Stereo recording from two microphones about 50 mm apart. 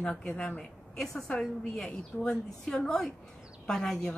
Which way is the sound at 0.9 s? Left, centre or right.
Centre.